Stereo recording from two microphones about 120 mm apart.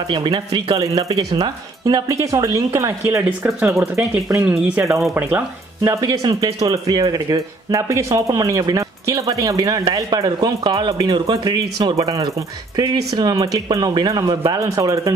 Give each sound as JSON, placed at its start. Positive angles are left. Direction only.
{"t": 0.1, "sound": "speech", "side_deg": -40}
{"t": 3.4, "sound": "speech", "side_deg": -5}
{"t": 5.9, "sound": "speech", "side_deg": -30}